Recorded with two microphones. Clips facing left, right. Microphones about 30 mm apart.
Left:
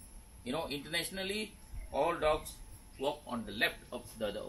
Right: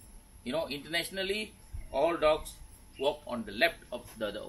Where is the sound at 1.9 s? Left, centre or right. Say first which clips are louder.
Right 4 dB; right.